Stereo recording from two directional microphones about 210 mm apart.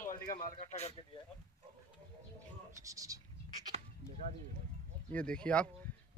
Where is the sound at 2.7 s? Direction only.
15° right (ahead or behind).